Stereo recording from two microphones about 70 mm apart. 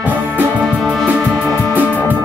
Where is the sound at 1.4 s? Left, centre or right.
Left.